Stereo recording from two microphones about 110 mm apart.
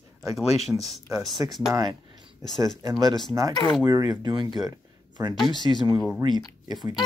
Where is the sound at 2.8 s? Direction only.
35° right (ahead or behind).